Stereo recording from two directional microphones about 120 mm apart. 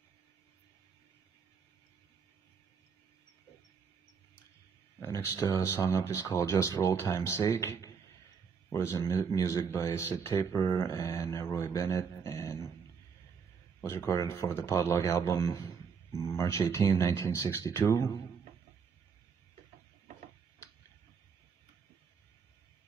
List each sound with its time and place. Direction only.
5.0 s a man's voice: 25° left (ahead or behind)
13.8 s speech: 25° left (ahead or behind)